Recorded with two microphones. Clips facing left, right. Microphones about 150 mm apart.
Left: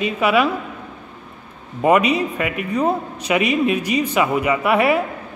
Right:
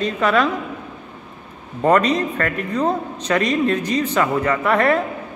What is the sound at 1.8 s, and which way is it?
A man's voice, 10° left (ahead or behind).